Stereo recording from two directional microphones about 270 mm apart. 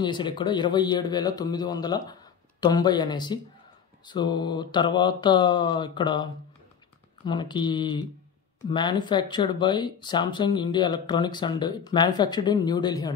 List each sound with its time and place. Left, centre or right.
0.0 s speech: centre